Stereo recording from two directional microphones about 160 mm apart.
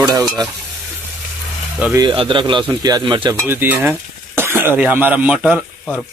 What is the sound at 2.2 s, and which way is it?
Speech, 30° right (ahead or behind).